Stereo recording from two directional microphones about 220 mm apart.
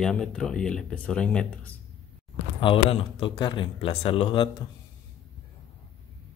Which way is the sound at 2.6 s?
25° left (ahead or behind).